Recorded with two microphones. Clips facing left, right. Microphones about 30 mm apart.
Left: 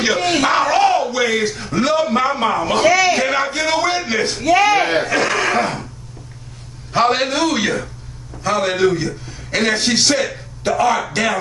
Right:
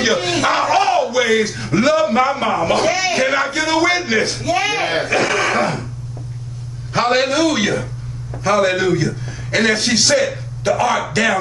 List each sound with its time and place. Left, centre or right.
0.4 s a sound: centre
1.1 s a man's voice: centre
2.8 s a man's voice: left
3.2 s a man's voice: centre
4.5 s a man's voice: left
5.1 s a man's voice: centre
6.9 s a man's voice: centre